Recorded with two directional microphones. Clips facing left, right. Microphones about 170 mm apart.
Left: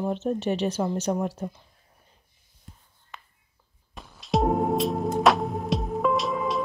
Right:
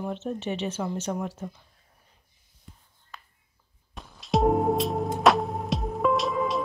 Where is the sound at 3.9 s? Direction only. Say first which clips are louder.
Even; centre (ahead or behind).